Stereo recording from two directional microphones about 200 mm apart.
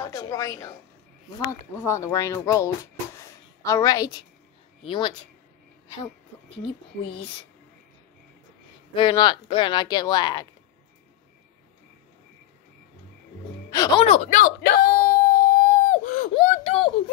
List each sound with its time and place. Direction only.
0.0 s a woman's voice: 15° left (ahead or behind)
1.8 s speech: 15° left (ahead or behind)
8.9 s speech: 20° left (ahead or behind)
13.7 s speech: 20° left (ahead or behind)
14.0 s speech: 35° left (ahead or behind)
14.6 s a sound: 50° left (ahead or behind); by 16.9 s 30° left (ahead or behind)